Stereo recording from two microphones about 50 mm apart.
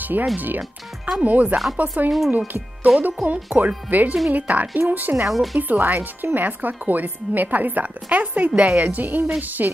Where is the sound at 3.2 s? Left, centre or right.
Centre.